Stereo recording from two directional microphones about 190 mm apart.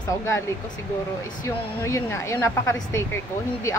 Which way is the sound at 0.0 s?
15° left (ahead or behind).